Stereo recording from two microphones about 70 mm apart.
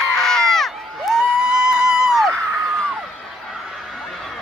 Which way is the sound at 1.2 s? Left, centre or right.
Centre.